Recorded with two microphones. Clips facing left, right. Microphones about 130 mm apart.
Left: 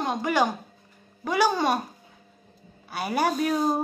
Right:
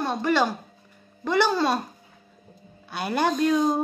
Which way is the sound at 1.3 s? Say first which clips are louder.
Right 1 dB; 10° left (ahead or behind).